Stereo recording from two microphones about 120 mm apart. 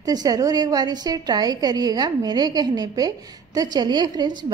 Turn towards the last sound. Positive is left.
turn(degrees=-40)  # may be behind; listen again after turning